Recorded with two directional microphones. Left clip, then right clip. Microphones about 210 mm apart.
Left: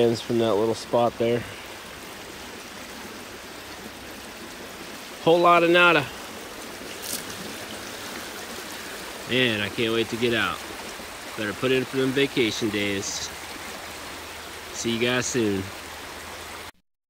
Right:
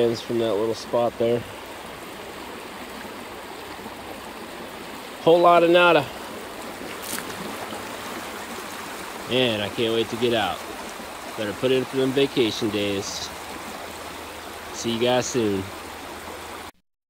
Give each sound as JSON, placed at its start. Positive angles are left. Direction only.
{"t": 0.0, "sound": "speech", "side_deg": 0}
{"t": 5.2, "sound": "speech", "side_deg": -15}
{"t": 9.3, "sound": "speech", "side_deg": -15}
{"t": 14.8, "sound": "speech", "side_deg": -20}